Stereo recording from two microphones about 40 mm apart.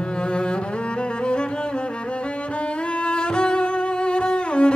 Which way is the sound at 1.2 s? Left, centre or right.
Left.